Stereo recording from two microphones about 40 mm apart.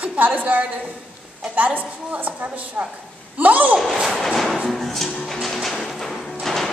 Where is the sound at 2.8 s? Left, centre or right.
Right.